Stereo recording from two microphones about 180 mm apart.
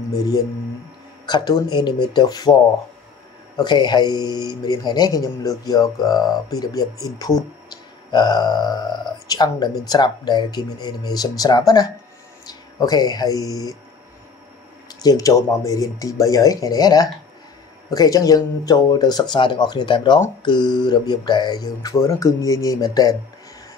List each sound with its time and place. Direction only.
1.2 s speech: 25° left (ahead or behind)
3.5 s speech: 25° left (ahead or behind)
14.9 s speech: 20° left (ahead or behind)